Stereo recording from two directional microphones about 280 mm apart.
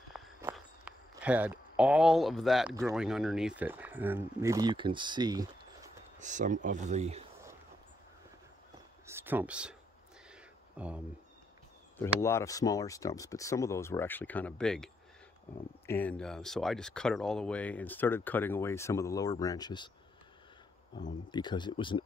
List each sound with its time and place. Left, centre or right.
0.1 s walk: centre
2.8 s speech: centre
6.1 s speech: right
9.0 s speech: centre
10.8 s speech: centre
12.0 s speech: centre
15.9 s speech: centre
21.3 s speech: centre